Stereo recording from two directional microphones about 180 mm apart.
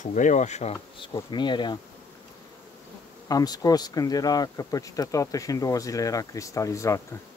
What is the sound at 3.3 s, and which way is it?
Speech, 20° left (ahead or behind).